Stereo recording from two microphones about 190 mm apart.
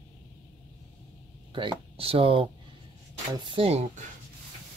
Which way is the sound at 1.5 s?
30° right (ahead or behind).